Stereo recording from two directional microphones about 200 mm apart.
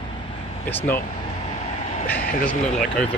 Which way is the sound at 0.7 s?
10° left (ahead or behind).